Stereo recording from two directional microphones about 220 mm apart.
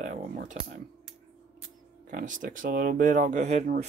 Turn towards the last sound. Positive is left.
turn(degrees=-30)  # may be behind; listen again after turning